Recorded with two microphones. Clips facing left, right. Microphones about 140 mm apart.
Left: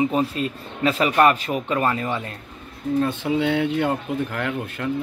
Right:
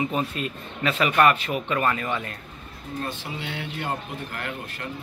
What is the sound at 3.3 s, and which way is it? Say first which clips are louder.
Speech: left 13 dB; 90° left.